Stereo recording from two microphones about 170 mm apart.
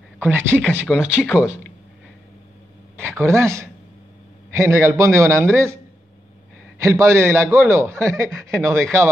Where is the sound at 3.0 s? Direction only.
15° right (ahead or behind).